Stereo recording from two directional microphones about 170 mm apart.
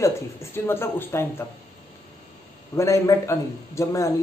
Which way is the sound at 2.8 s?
15° left (ahead or behind).